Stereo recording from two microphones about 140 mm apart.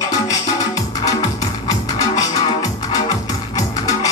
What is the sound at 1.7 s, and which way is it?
Music, 25° left (ahead or behind).